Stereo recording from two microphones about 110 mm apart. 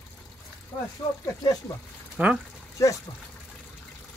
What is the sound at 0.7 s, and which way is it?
Speech, 35° left (ahead or behind).